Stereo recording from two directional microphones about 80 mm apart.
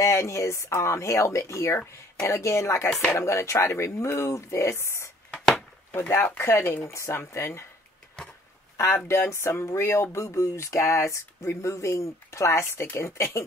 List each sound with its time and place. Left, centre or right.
0.0 s speech: left
2.9 s speech: centre
3.2 s speech: left
5.3 s a sound: centre
5.9 s speech: left
8.2 s a sound: centre
8.7 s speech: left